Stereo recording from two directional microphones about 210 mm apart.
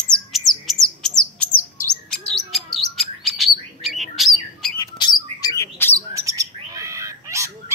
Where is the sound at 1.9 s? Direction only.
Centre (ahead or behind).